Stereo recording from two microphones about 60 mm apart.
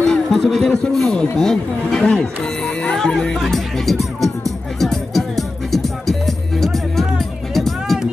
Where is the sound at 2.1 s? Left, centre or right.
Centre.